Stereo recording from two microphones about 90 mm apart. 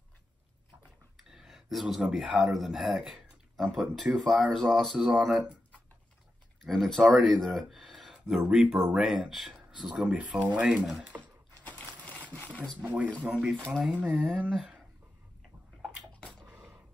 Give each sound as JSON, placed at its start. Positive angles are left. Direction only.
{"t": 1.1, "sound": "speech", "side_deg": -5}
{"t": 6.6, "sound": "speech", "side_deg": 0}
{"t": 11.6, "sound": "a sound", "side_deg": 15}
{"t": 12.8, "sound": "speech", "side_deg": -15}
{"t": 14.0, "sound": "speech", "side_deg": 0}
{"t": 16.4, "sound": "dishes", "side_deg": -5}